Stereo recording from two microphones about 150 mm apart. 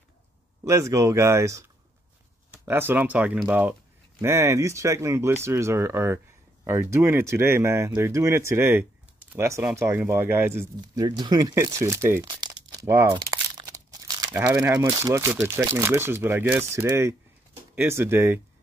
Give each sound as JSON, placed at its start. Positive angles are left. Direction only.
{"t": 0.7, "sound": "speech", "side_deg": -20}
{"t": 11.1, "sound": "speech", "side_deg": -30}
{"t": 12.4, "sound": "crumpling", "side_deg": -30}
{"t": 13.6, "sound": "crunch", "side_deg": -25}
{"t": 14.3, "sound": "speech", "side_deg": -10}